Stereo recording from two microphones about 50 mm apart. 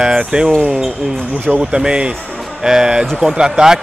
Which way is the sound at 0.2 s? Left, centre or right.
Centre.